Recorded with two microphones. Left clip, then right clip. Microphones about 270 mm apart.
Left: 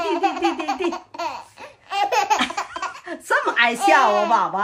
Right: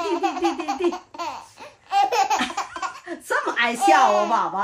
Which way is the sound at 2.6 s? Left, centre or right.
Centre.